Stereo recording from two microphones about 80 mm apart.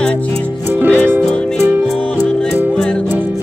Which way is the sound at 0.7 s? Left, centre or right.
Right.